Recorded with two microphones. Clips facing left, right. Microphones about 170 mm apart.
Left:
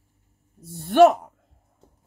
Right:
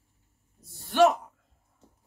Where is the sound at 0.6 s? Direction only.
55° left (ahead or behind).